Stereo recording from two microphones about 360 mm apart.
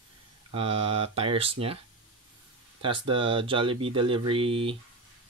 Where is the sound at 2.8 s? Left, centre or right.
Centre.